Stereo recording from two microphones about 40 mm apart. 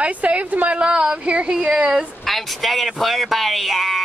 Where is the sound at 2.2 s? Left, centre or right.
Centre.